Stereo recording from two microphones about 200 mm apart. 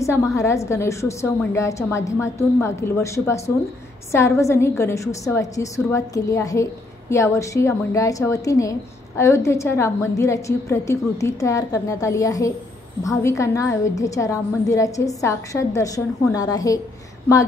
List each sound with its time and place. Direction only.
0.0 s a woman's voice: 15° left (ahead or behind)